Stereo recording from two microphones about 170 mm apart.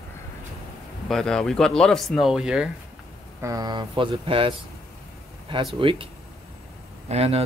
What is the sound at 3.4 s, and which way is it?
Speech, 20° right (ahead or behind).